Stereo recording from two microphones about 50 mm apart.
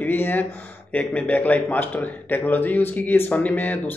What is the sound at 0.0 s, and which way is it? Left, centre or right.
Speech, left.